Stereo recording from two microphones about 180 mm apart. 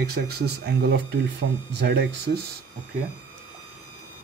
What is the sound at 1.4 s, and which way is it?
Speech, 90° right.